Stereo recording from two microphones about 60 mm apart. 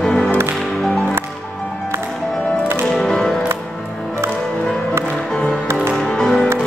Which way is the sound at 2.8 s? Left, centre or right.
Centre.